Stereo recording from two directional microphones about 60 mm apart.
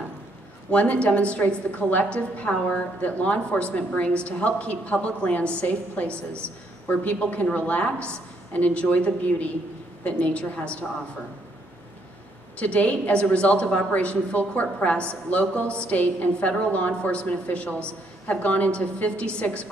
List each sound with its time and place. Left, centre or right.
0.7 s a woman's voice: left
12.5 s a woman's voice: left